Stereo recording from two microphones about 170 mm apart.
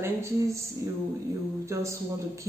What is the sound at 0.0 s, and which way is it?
Speech, 15° right (ahead or behind).